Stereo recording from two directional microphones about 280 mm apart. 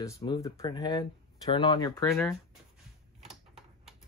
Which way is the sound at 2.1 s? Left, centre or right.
Centre.